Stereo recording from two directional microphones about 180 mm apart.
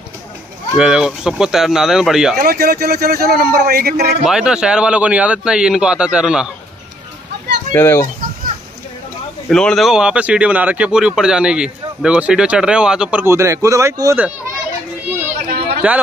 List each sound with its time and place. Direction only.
0.7 s speech: 5° right (ahead or behind)
2.3 s speech: 55° right (ahead or behind)
4.3 s speech: 5° right (ahead or behind)
7.7 s speech: 10° left (ahead or behind)
9.5 s speech: 5° left (ahead or behind); by 14.3 s 15° right (ahead or behind)
15.4 s a sound: 55° right (ahead or behind)